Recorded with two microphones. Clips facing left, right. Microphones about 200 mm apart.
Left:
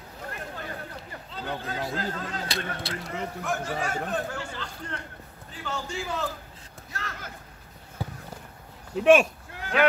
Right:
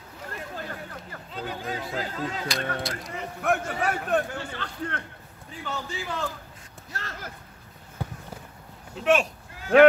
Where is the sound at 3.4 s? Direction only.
60° right (ahead or behind).